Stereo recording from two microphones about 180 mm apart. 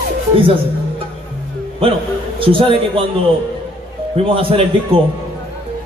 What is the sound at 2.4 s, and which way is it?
Speech, 30° right (ahead or behind).